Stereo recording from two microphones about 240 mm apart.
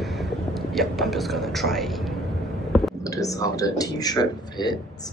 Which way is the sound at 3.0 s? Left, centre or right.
Centre.